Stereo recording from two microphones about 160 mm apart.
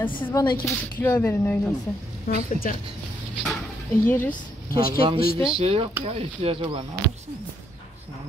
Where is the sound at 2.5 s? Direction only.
60° left (ahead or behind).